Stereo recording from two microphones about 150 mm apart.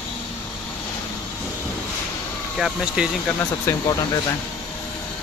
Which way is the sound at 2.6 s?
5° right (ahead or behind).